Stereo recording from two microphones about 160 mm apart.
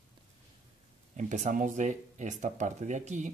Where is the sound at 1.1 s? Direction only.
50° right (ahead or behind).